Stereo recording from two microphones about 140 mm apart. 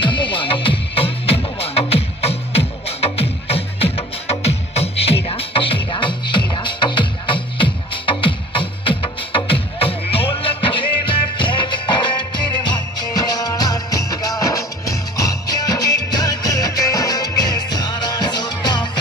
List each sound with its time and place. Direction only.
0.0 s music: 35° left (ahead or behind)